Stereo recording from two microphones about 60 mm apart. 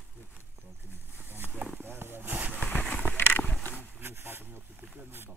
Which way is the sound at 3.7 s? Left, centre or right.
Right.